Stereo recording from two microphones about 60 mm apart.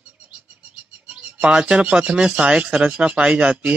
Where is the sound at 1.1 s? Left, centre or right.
Centre.